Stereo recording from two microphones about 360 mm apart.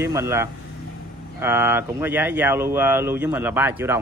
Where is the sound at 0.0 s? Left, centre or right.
Centre.